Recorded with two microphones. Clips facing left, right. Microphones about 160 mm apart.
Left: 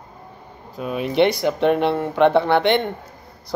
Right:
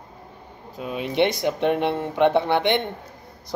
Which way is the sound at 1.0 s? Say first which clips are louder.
Left 4 dB; 20° right (ahead or behind).